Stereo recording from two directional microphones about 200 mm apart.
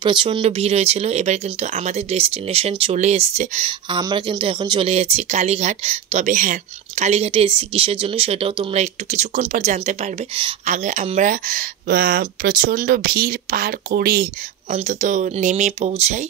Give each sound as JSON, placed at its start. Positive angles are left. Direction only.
{"t": 0.0, "sound": "speech", "side_deg": -25}
{"t": 14.7, "sound": "speech", "side_deg": -35}